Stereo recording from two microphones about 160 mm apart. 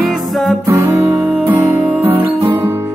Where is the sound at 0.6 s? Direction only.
15° right (ahead or behind).